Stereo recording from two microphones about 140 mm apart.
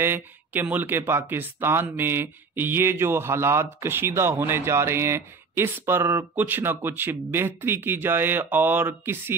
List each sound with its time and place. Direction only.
0.0 s speech: 15° right (ahead or behind)